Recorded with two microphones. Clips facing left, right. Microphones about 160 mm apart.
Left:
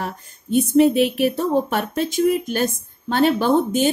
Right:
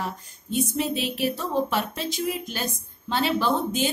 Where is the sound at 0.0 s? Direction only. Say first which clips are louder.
Left 3 dB; 60° left (ahead or behind).